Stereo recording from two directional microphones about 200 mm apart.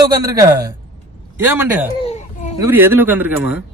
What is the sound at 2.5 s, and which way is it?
A man's voice, 10° right (ahead or behind).